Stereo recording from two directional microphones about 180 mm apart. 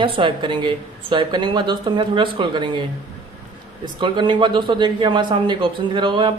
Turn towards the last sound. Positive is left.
turn(degrees=-25)  # may be behind; listen again after turning